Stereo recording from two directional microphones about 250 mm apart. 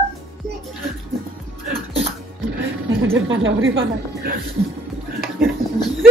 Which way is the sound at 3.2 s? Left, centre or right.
Right.